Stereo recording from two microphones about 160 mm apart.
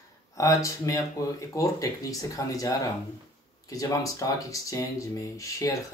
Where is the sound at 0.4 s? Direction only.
20° left (ahead or behind).